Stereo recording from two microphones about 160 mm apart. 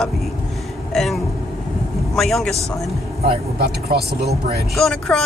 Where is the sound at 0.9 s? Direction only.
Centre (ahead or behind).